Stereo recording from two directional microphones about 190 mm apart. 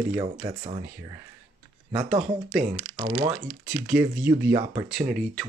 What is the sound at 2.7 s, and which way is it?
Speech, 25° right (ahead or behind).